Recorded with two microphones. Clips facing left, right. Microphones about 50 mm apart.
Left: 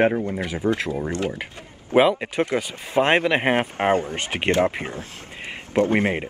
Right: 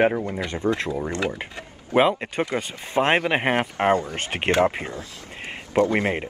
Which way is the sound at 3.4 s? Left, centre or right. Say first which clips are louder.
Left 1 dB; left.